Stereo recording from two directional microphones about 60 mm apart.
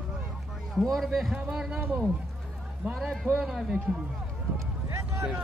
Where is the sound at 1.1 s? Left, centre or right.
Centre.